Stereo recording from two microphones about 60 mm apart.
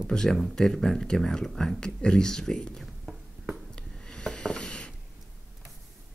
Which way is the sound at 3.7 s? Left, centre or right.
Centre.